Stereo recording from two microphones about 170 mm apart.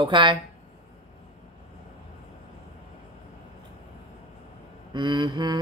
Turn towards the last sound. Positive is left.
turn(degrees=-25)  # may be behind; listen again after turning